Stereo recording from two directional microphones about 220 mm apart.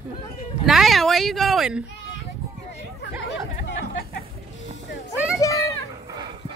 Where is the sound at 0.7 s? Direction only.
Centre (ahead or behind).